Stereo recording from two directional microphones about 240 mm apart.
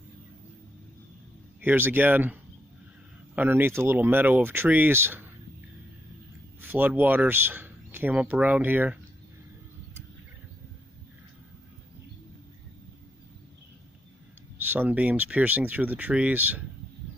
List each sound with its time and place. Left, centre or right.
1.6 s speech: centre
3.3 s speech: centre
6.6 s speech: centre
14.7 s speech: centre